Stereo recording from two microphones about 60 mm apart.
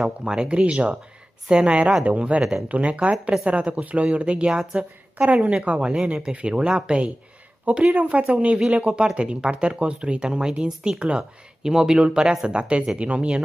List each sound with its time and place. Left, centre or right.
0.2 s speech: centre